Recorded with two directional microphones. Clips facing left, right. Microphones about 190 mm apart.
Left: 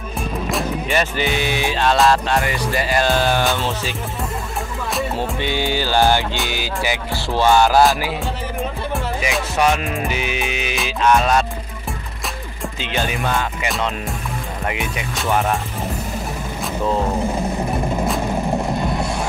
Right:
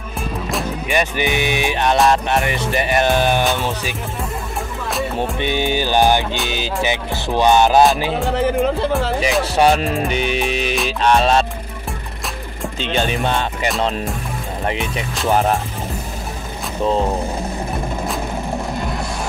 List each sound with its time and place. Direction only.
0.8 s music: 15° right (ahead or behind)
5.1 s music: 20° right (ahead or behind)
9.4 s music: 35° right (ahead or behind)
10.0 s music: 5° left (ahead or behind)
10.3 s music: 35° right (ahead or behind)
12.9 s music: 30° right (ahead or behind)
15.2 s music: 35° right (ahead or behind)